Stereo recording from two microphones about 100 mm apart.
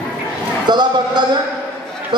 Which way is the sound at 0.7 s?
45° right (ahead or behind).